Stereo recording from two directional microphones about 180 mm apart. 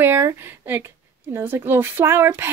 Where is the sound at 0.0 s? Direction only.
15° right (ahead or behind).